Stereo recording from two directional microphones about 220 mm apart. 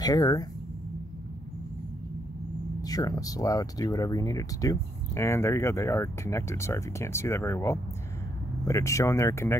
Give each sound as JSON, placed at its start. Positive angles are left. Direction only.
{"t": 0.0, "sound": "speech", "side_deg": 15}
{"t": 2.8, "sound": "speech", "side_deg": 15}